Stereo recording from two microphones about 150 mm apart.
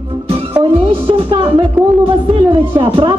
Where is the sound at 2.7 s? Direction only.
35° right (ahead or behind).